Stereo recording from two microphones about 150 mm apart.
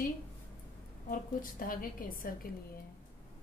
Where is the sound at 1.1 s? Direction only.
70° left (ahead or behind).